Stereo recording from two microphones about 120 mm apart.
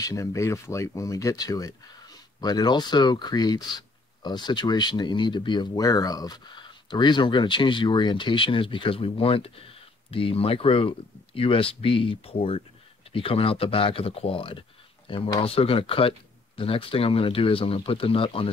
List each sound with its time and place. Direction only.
0.0 s speech: 30° left (ahead or behind); by 18.5 s 50° left (ahead or behind)